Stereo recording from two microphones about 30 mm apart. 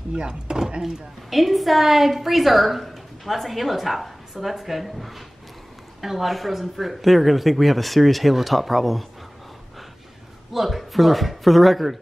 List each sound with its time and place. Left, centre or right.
0.1 s speech: right
0.8 s a woman's voice: centre
10.5 s a woman's voice: centre